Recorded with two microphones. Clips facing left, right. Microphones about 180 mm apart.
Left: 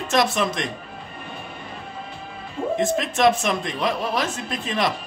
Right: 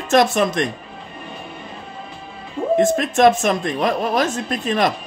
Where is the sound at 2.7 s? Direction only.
50° right (ahead or behind).